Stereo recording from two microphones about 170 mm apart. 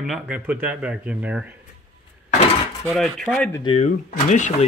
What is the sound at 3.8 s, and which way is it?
Speech, 45° left (ahead or behind).